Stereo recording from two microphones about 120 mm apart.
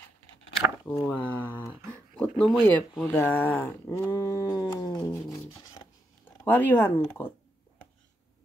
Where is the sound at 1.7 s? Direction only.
20° right (ahead or behind).